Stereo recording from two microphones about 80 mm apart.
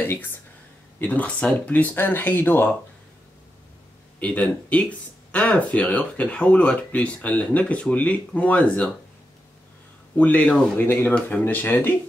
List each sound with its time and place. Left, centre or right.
0.0 s speech: left
4.2 s speech: centre
10.1 s speech: centre
10.8 s speech: left